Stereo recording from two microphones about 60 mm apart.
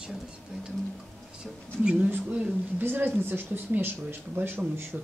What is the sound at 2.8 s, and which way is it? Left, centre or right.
Speech, right.